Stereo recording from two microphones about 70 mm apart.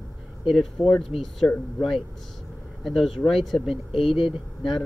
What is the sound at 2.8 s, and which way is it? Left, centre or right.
Speech, centre.